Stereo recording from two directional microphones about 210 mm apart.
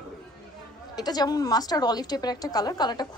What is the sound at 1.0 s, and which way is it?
A woman's voice, 20° left (ahead or behind).